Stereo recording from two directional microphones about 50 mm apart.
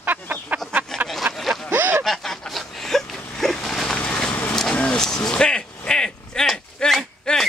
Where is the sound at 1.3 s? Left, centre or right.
Right.